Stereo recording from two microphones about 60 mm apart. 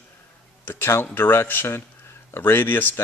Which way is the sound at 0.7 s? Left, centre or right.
Left.